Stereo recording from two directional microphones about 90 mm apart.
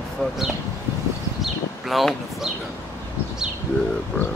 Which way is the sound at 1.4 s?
Centre (ahead or behind).